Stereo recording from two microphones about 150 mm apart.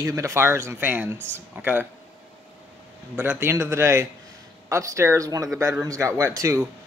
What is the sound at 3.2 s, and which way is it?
Speech, 15° right (ahead or behind).